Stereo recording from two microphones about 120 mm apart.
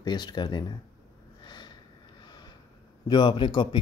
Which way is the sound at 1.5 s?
35° left (ahead or behind).